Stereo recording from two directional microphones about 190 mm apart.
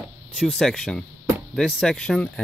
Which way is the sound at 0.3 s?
Centre (ahead or behind).